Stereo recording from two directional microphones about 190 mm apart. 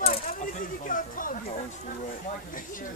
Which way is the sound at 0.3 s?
45° left (ahead or behind).